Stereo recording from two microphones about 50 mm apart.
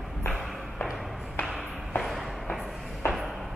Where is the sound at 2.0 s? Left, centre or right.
Centre.